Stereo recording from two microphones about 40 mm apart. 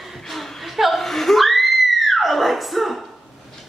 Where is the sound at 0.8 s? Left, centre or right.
Centre.